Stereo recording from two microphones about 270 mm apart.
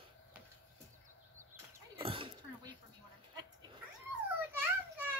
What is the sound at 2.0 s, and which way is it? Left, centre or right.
Dog, centre.